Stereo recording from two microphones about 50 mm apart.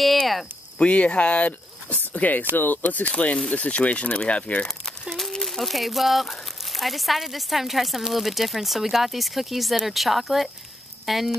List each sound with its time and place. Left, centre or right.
0.0 s a sound: centre
0.7 s speech: left
5.3 s speech: centre